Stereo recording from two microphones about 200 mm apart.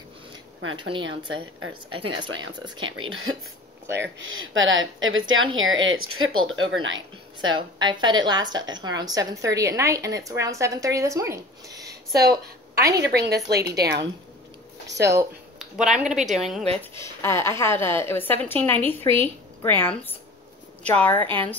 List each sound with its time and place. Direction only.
0.7 s speech: 25° right (ahead or behind)
1.3 s a woman's voice: 90° right
2.0 s speech: 25° right (ahead or behind)
3.0 s a woman's voice: 90° right
3.9 s speech: 65° right (ahead or behind)
7.5 s a woman's voice: 20° right (ahead or behind)
13.3 s a woman's voice: 55° right (ahead or behind)
15.0 s a woman's voice: 15° right (ahead or behind)
15.6 s a woman's voice: 5° right (ahead or behind)
16.7 s a woman's voice: 10° left (ahead or behind)